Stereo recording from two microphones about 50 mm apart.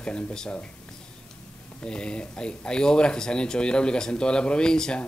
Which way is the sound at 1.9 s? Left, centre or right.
Centre.